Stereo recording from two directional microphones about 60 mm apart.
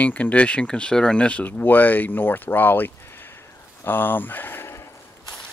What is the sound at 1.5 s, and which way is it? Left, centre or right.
Speech, left.